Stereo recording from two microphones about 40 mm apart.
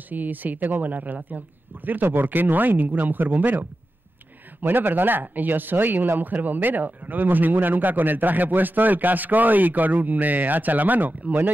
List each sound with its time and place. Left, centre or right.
0.1 s speech: right
2.0 s speech: right